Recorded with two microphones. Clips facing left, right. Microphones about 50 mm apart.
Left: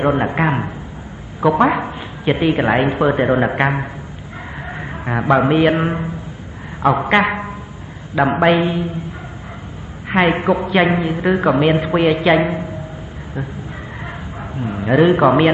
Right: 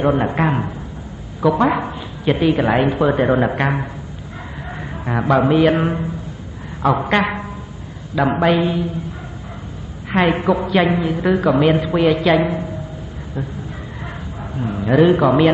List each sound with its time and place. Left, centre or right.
0.0 s a woman's voice: left
10.0 s a woman's voice: left
14.0 s bow-wow: centre